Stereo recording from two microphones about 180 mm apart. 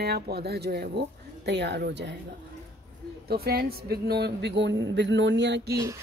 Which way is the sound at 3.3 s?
60° right (ahead or behind).